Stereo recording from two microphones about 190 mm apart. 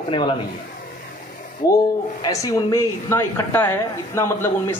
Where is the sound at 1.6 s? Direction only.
20° left (ahead or behind).